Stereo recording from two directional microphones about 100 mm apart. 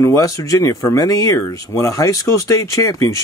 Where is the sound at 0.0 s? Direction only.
30° left (ahead or behind).